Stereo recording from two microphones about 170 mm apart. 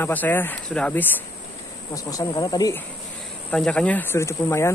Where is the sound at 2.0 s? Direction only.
20° left (ahead or behind).